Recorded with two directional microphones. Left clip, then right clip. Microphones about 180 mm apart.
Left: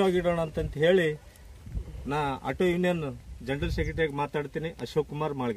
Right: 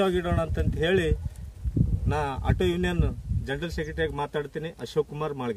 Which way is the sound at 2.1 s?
30° right (ahead or behind).